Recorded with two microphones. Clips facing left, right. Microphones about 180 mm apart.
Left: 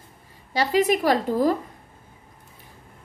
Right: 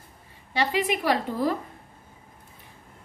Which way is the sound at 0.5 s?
40° left (ahead or behind).